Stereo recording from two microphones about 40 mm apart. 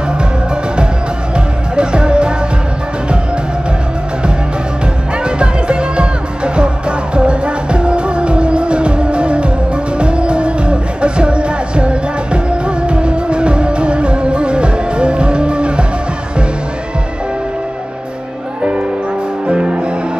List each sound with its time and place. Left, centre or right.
1.3 s music: right
5.2 s music: right
19.4 s music: right